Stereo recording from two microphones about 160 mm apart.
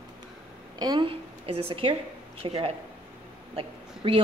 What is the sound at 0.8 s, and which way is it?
A woman's voice, 30° right (ahead or behind).